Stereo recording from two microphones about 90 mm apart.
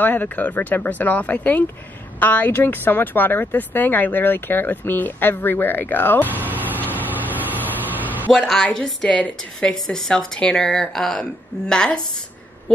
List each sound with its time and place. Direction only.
0.0 s speech: 20° left (ahead or behind)
6.3 s vehicle: 20° right (ahead or behind)
8.3 s a woman's voice: 5° left (ahead or behind)